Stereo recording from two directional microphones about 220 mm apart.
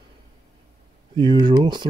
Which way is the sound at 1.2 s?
20° right (ahead or behind).